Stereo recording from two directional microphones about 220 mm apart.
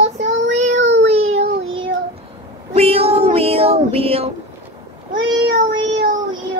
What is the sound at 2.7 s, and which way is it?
Child singing, 25° right (ahead or behind).